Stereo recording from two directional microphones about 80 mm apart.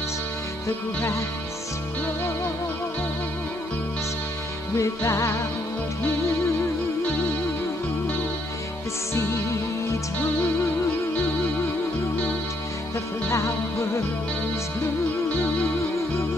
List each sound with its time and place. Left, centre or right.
4.7 s music: left
9.1 s music: left
13.3 s music: left